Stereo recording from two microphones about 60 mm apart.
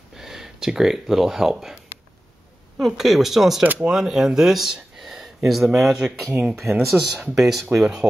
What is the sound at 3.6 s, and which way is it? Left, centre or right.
Speech, right.